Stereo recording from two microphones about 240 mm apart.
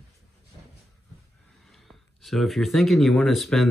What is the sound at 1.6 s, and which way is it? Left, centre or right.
Speech, centre.